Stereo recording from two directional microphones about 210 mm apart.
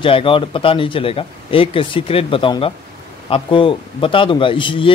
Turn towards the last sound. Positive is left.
turn(degrees=25)  # may be behind; listen again after turning